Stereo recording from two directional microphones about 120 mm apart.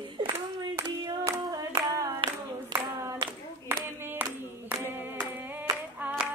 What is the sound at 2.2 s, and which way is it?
Clapping, 45° right (ahead or behind).